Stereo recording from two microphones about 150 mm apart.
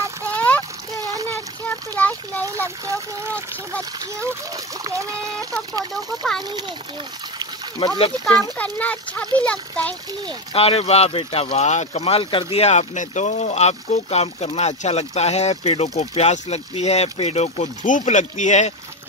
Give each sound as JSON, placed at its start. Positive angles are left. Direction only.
{"t": 0.3, "sound": "a sound", "side_deg": 10}
{"t": 2.4, "sound": "a child's voice", "side_deg": -20}
{"t": 7.8, "sound": "speech", "side_deg": 40}
{"t": 8.7, "sound": "speech", "side_deg": 10}
{"t": 10.5, "sound": "speech", "side_deg": 40}